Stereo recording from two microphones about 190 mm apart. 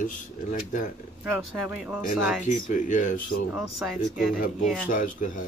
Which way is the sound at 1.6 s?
5° right (ahead or behind).